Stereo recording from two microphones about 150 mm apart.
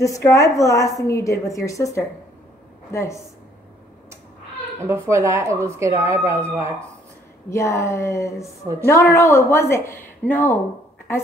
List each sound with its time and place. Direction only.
0.0 s a woman's voice: 20° left (ahead or behind)
4.8 s speech: 20° right (ahead or behind)
7.4 s a woman's voice: 20° left (ahead or behind)